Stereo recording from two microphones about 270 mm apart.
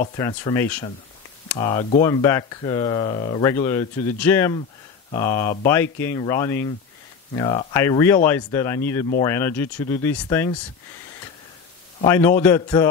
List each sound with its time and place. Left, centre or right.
0.2 s speech: centre
12.1 s speech: centre